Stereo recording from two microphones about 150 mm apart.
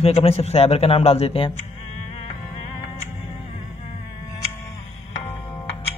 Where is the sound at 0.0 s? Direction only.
45° left (ahead or behind).